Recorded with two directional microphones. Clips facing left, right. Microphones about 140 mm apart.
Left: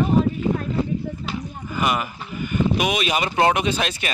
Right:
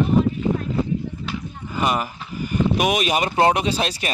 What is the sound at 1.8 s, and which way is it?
Speech, 35° right (ahead or behind).